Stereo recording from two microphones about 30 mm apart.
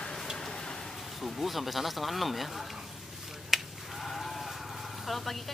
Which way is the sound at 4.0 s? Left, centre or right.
Centre.